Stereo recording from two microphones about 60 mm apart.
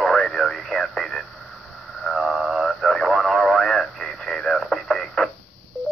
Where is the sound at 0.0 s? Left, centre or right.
Centre.